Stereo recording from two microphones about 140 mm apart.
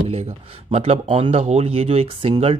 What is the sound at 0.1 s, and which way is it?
Speech, 50° right (ahead or behind).